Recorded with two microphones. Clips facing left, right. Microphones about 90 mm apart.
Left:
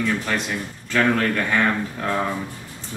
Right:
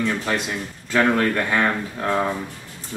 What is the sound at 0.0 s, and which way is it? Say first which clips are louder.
A man's voice: even; 15° right (ahead or behind).